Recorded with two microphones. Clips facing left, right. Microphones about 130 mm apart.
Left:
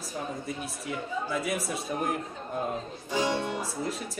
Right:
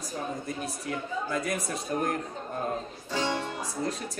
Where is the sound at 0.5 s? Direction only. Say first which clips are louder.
Right 1 dB; 5° left (ahead or behind).